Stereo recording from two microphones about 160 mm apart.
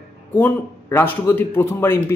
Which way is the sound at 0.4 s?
15° left (ahead or behind).